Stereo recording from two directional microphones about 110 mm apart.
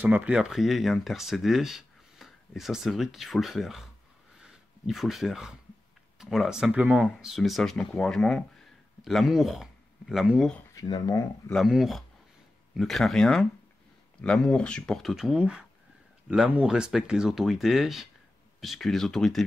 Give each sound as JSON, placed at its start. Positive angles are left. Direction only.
{"t": 0.0, "sound": "speech", "side_deg": -15}
{"t": 10.7, "sound": "speech", "side_deg": 35}
{"t": 11.5, "sound": "speech", "side_deg": 0}